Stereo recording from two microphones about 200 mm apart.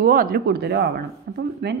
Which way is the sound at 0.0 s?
45° right (ahead or behind).